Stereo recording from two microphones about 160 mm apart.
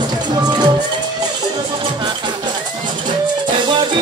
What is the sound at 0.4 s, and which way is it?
Speech, 25° right (ahead or behind).